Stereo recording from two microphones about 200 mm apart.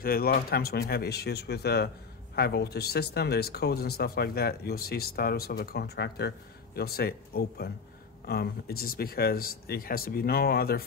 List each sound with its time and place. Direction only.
0.0 s speech: 50° left (ahead or behind)